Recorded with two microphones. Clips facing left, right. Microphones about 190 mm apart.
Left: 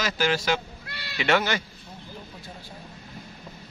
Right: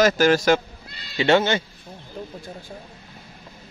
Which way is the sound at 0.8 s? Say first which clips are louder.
Left 3 dB; 65° left (ahead or behind).